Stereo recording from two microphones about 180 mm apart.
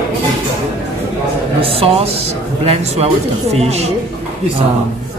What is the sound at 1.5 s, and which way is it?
Speech, 30° right (ahead or behind).